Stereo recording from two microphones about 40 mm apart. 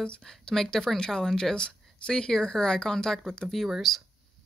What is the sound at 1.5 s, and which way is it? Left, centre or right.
Speech, left.